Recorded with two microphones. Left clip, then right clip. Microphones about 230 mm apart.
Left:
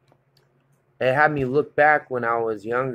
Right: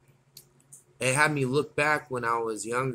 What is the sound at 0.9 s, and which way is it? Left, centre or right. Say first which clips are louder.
Speech: left 6 dB; centre.